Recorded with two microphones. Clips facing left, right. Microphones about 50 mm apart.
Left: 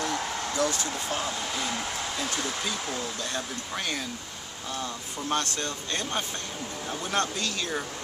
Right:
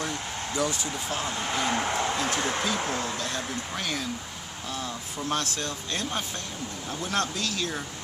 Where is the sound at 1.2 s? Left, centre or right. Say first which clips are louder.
Right 3 dB; right.